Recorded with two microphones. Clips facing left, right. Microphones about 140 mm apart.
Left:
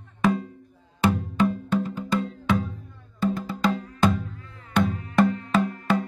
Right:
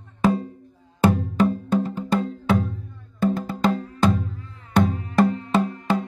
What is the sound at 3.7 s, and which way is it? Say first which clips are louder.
Music: right 2 dB; 35° right (ahead or behind).